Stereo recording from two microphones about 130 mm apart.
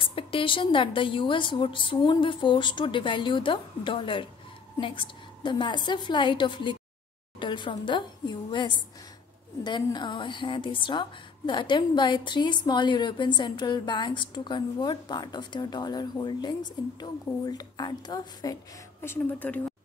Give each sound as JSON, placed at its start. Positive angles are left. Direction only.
{"t": 0.0, "sound": "a woman's voice", "side_deg": 40}
{"t": 18.9, "sound": "speech", "side_deg": 15}